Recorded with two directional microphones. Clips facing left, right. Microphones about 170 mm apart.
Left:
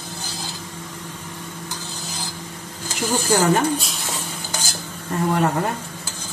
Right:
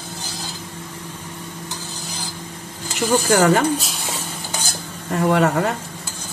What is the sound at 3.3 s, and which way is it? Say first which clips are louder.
Speech: right 2 dB; 90° right.